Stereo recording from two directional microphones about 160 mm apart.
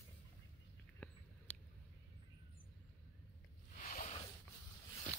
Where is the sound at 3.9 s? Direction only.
60° left (ahead or behind).